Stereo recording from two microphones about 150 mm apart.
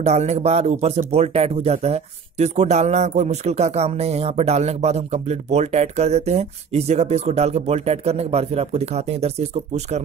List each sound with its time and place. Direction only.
0.0 s speech: 45° right (ahead or behind)